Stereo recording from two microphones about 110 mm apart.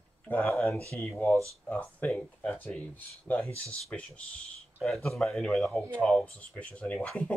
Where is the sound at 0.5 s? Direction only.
Centre (ahead or behind).